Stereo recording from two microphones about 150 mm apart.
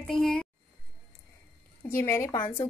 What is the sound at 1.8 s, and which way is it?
Speech, 15° left (ahead or behind).